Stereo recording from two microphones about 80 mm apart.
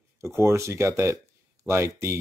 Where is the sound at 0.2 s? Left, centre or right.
Right.